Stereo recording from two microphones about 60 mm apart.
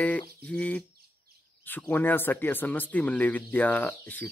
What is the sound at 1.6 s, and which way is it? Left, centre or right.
Speech, left.